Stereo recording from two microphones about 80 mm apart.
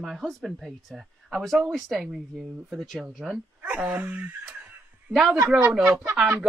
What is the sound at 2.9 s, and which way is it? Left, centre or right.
Speech, centre.